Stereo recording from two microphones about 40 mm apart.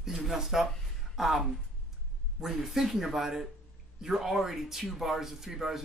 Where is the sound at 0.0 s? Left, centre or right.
Centre.